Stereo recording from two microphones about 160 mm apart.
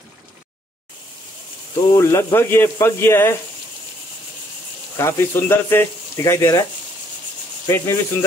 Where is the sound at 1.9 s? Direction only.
15° left (ahead or behind).